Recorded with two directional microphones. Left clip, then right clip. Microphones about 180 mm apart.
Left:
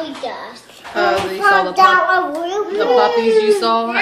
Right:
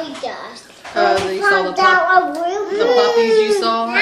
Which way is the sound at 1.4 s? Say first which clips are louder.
Left 6 dB; 35° left (ahead or behind).